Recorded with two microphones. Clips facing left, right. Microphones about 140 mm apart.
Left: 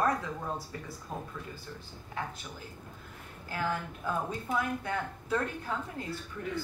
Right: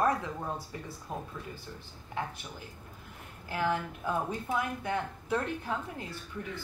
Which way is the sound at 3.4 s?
15° right (ahead or behind).